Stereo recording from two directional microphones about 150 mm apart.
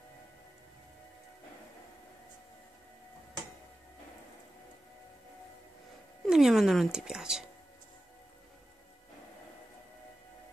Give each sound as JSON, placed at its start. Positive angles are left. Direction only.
{"t": 6.2, "sound": "speech", "side_deg": -5}